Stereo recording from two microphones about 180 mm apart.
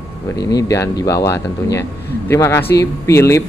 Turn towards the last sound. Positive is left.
turn(degrees=15)  # may be behind; listen again after turning